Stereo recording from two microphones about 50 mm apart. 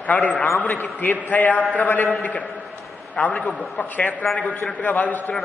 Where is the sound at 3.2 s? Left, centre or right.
Left.